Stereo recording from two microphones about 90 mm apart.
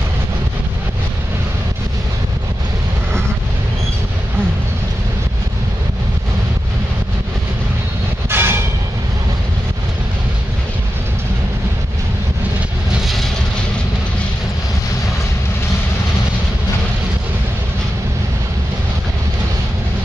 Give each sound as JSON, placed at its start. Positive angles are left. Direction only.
{"t": 8.3, "sound": "train", "side_deg": -25}